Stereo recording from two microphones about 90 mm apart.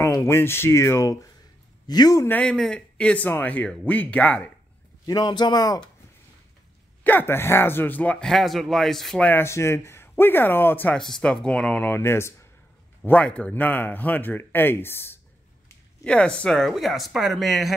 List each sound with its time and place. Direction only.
0.0 s speech: 30° left (ahead or behind)
1.9 s a man's voice: 45° left (ahead or behind)
2.4 s a man's voice: 10° left (ahead or behind)
5.0 s a man's voice: 50° left (ahead or behind)
7.0 s speech: 20° left (ahead or behind)
8.3 s speech: centre (ahead or behind)
9.2 s speech: 25° left (ahead or behind)
11.0 s a man's voice: 5° left (ahead or behind); by 12.4 s 30° left (ahead or behind)
13.0 s speech: 15° left (ahead or behind)
16.0 s speech: 10° left (ahead or behind)